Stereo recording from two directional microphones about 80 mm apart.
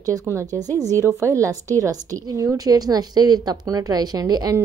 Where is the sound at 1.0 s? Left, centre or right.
Right.